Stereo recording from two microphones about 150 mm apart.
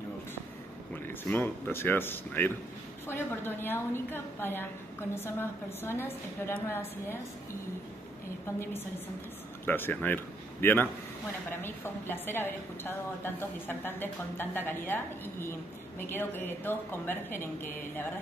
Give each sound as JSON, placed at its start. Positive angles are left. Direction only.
{"t": 0.9, "sound": "a woman's voice", "side_deg": 15}
{"t": 9.7, "sound": "a man's voice", "side_deg": 15}
{"t": 16.0, "sound": "a woman's voice", "side_deg": 15}